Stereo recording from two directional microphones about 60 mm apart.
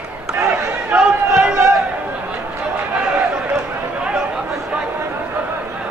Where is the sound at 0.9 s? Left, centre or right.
Centre.